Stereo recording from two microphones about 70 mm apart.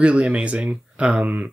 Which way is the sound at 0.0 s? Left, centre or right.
Centre.